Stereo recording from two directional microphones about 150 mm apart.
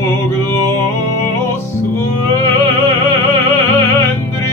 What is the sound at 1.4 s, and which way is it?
Music, 15° left (ahead or behind).